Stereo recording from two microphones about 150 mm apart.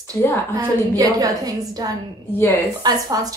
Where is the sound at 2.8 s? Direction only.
25° right (ahead or behind).